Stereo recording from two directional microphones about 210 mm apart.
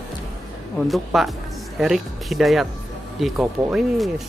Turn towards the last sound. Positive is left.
turn(degrees=0)  # may be behind; listen again after turning